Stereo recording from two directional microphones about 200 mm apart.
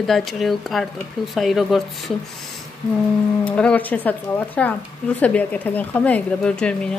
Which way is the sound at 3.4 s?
5° left (ahead or behind).